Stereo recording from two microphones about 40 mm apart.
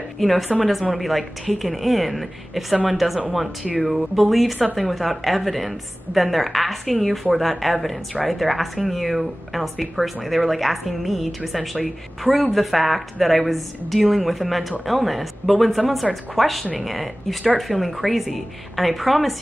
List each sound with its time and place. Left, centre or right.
0.2 s speech: centre